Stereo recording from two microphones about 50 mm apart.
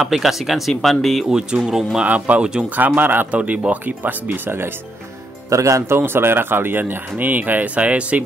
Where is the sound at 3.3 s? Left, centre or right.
Right.